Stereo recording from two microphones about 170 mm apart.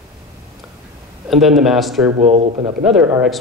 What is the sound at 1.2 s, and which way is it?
Speech, centre (ahead or behind).